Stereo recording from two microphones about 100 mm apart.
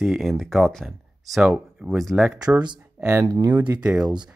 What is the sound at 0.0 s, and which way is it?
Speech, centre (ahead or behind).